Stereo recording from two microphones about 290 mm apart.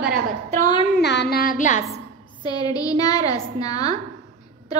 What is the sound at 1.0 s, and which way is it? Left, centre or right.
Music, left.